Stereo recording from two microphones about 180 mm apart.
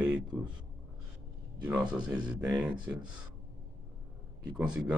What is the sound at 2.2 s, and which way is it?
Speech, 20° right (ahead or behind).